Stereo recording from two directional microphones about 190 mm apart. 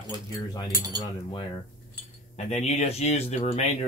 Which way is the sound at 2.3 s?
35° left (ahead or behind).